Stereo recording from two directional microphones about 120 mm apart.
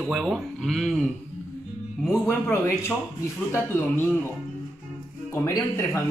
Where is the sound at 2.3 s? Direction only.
15° left (ahead or behind).